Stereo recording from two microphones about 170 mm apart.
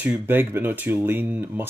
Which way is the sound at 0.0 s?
10° right (ahead or behind).